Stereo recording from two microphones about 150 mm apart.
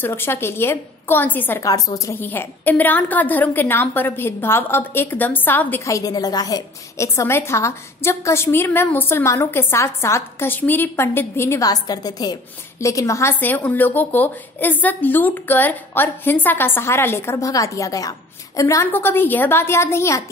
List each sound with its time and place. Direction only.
0.0 s a woman's voice: 15° left (ahead or behind)